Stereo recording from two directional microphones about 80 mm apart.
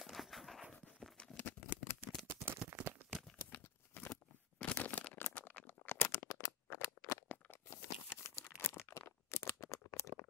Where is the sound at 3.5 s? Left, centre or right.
Left.